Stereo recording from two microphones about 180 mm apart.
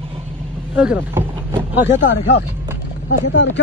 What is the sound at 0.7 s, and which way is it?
Speech, 10° right (ahead or behind).